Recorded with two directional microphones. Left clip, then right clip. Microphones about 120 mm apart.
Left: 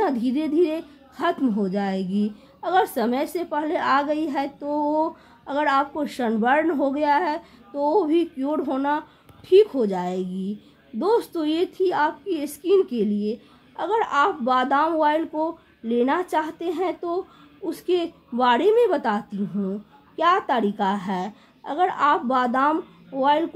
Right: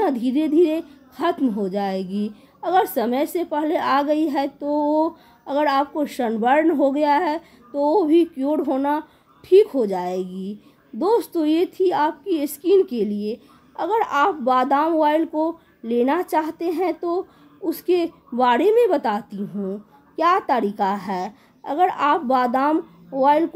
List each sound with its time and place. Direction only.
0.0 s a woman's voice: 25° right (ahead or behind)